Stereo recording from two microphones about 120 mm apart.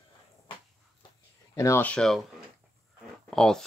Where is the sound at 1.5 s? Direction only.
25° left (ahead or behind).